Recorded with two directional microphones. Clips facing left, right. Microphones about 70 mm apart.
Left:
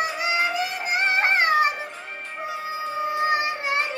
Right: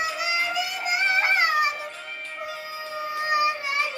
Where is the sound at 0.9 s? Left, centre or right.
Left.